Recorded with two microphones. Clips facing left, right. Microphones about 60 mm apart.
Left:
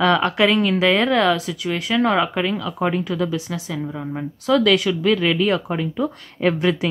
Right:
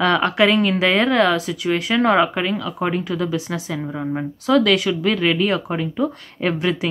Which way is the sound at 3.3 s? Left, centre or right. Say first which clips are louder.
Right 2 dB; right.